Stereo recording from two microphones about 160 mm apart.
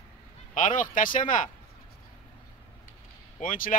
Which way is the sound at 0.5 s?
55° left (ahead or behind).